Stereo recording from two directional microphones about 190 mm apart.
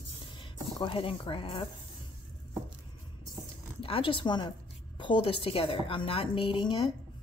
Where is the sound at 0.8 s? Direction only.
25° left (ahead or behind).